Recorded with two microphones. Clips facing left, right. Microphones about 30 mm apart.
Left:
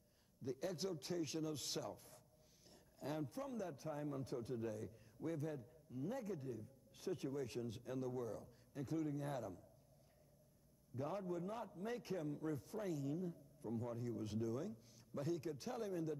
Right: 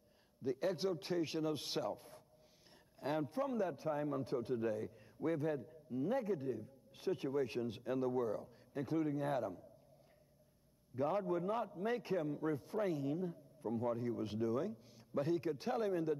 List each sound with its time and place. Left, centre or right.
0.4 s a man's voice: right
11.0 s a man's voice: right